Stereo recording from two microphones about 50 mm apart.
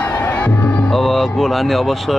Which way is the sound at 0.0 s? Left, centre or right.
Left.